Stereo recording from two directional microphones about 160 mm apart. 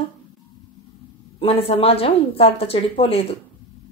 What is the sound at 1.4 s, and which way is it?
Speech, 40° left (ahead or behind).